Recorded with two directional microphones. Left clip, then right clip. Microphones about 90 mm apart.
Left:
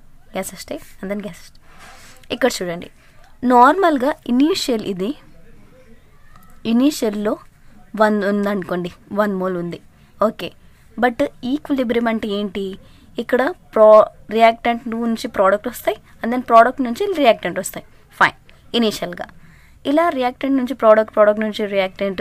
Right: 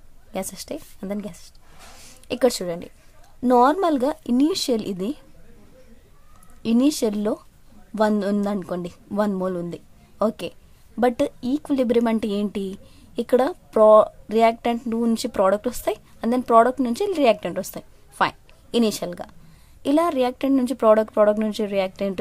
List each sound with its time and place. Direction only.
0.3 s speech: 20° right (ahead or behind)
6.6 s a woman's voice: 20° right (ahead or behind)
12.0 s speech: 45° right (ahead or behind)
12.5 s a woman's voice: 25° right (ahead or behind)
14.8 s a woman's voice: 45° right (ahead or behind); by 19.3 s 25° right (ahead or behind)
19.8 s a woman's voice: 40° right (ahead or behind)